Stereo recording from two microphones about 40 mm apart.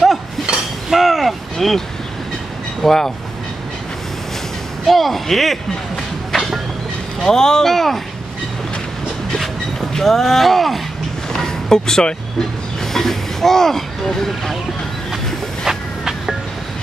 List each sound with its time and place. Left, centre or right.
0.5 s a sound: right
0.8 s vehicle: centre
2.8 s speech: centre
4.8 s speech: centre
7.2 s speech: centre
7.6 s speech: centre
9.9 s speech: centre
11.3 s music: centre
12.8 s a sound: centre
15.6 s a sound: centre